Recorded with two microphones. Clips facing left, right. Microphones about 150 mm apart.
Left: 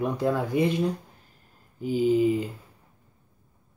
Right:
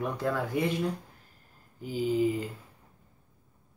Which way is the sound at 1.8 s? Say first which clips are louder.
Left 6 dB; 20° left (ahead or behind).